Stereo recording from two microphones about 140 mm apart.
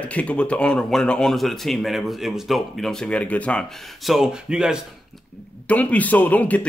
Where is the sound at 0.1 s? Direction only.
10° left (ahead or behind); by 4.7 s 5° right (ahead or behind).